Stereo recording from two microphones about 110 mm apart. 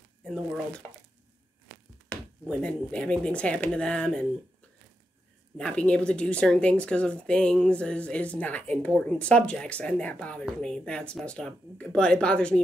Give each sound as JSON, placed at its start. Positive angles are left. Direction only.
{"t": 0.2, "sound": "speech", "side_deg": 5}
{"t": 2.1, "sound": "a sound", "side_deg": 15}
{"t": 2.4, "sound": "speech", "side_deg": 10}
{"t": 5.6, "sound": "speech", "side_deg": 10}